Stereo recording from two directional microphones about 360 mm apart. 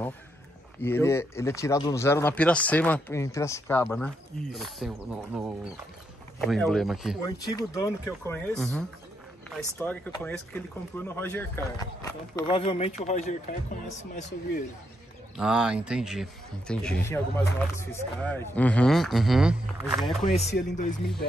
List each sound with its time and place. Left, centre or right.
0.8 s speech: centre
7.2 s speech: centre
15.3 s speech: centre
20.2 s speech: left